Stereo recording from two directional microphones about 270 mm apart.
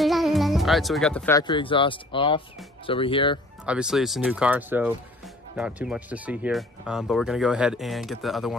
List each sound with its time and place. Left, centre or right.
0.0 s speech: centre
3.6 s speech: centre